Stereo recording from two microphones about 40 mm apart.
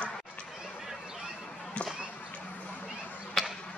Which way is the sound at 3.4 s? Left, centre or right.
Centre.